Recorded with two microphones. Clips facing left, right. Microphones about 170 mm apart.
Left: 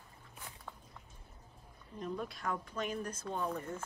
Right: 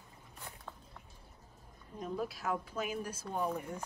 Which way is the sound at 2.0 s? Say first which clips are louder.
Right 2 dB; 5° right (ahead or behind).